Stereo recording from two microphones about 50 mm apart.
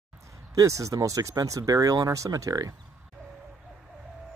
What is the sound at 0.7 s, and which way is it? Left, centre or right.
Speech, right.